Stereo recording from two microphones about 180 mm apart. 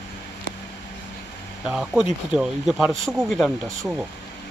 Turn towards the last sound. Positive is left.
turn(degrees=0)  # may be behind; listen again after turning